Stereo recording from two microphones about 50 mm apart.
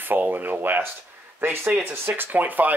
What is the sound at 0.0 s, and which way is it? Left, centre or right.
Speech, right.